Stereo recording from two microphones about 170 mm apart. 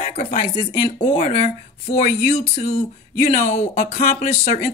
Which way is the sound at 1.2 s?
50° left (ahead or behind).